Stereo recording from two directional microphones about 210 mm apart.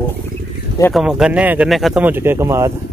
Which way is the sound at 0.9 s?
5° right (ahead or behind).